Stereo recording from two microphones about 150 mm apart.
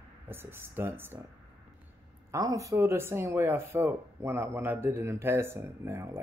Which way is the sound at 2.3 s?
20° right (ahead or behind).